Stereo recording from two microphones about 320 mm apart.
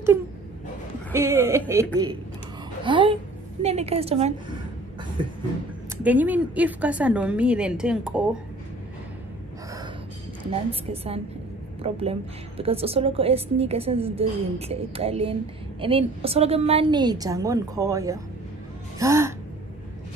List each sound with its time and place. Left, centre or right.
1.1 s a woman's voice: centre
2.8 s a woman's voice: centre
10.5 s a woman's voice: centre
18.9 s gasp: centre